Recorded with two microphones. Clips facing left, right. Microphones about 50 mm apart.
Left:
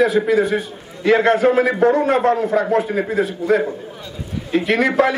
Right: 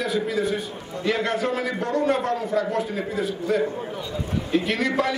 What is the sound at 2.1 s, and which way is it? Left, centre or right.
A man's voice, left.